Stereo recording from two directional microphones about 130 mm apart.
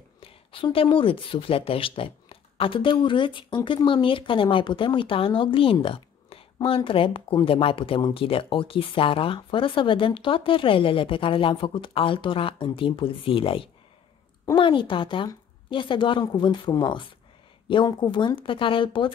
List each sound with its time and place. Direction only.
0.2 s a woman's voice: 40° left (ahead or behind)